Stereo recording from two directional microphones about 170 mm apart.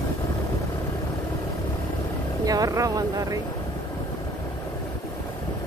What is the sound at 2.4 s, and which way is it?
Speech, 20° right (ahead or behind).